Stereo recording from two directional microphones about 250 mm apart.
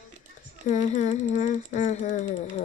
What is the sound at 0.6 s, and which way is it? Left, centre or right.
Speech, left.